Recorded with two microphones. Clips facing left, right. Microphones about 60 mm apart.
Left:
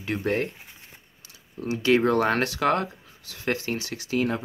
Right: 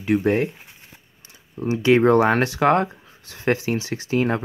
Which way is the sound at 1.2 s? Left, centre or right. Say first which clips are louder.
Right 5 dB; right.